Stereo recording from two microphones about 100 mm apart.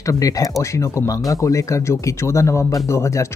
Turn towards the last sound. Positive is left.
turn(degrees=30)  # may be behind; listen again after turning